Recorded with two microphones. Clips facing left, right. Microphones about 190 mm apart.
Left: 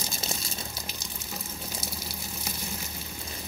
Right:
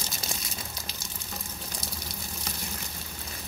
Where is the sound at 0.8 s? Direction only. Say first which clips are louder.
Left 2 dB; 10° left (ahead or behind).